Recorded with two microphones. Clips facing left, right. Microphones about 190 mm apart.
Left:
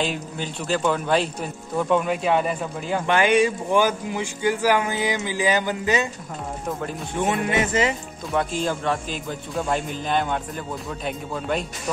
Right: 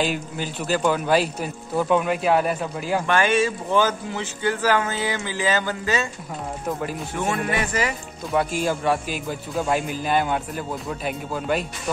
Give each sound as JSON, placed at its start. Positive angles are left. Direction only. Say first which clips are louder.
{"t": 0.0, "sound": "a man's voice", "louder": "right 2 dB", "side_deg": -5}
{"t": 3.1, "sound": "speech", "louder": "left 3 dB", "side_deg": 15}
{"t": 7.2, "sound": "speech", "louder": "left 3 dB", "side_deg": 20}
{"t": 8.3, "sound": "a man's voice", "louder": "right 1 dB", "side_deg": -5}